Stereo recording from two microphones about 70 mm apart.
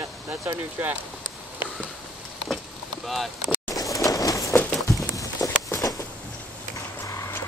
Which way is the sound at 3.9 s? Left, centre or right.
Left.